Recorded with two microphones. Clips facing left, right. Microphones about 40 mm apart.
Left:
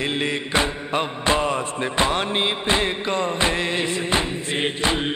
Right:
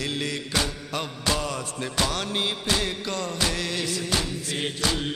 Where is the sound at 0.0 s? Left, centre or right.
Left.